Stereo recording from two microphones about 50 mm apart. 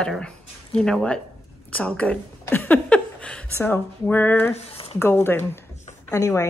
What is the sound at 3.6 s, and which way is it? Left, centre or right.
Speech, left.